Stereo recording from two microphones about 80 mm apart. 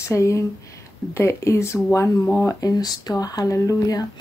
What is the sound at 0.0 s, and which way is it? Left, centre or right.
Speech, left.